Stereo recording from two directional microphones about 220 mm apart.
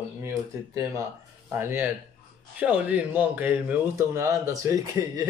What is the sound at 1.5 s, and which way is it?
A man's voice, 10° right (ahead or behind).